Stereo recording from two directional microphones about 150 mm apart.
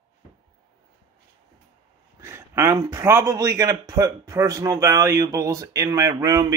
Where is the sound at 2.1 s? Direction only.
20° right (ahead or behind).